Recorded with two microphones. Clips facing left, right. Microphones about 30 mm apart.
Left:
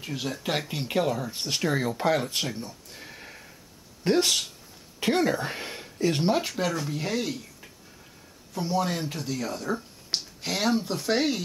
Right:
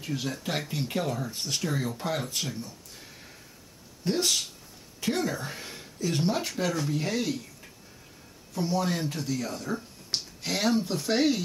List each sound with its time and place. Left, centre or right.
0.0 s speech: centre
1.3 s speech: left
2.5 s a sound: left
4.0 s speech: left
6.3 s speech: centre